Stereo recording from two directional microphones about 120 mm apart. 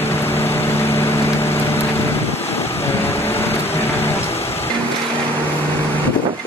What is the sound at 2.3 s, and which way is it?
Vehicle, 60° left (ahead or behind).